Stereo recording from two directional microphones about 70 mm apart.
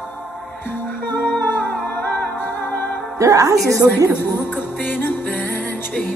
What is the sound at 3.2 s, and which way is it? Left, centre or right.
Speech, right.